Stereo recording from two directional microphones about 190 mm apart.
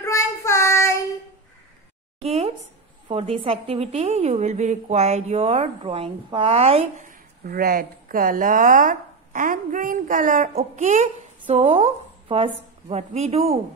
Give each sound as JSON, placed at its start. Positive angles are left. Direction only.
{"t": 0.0, "sound": "child singing", "side_deg": 15}
{"t": 2.2, "sound": "a sound", "side_deg": -35}
{"t": 3.1, "sound": "a woman's voice", "side_deg": -30}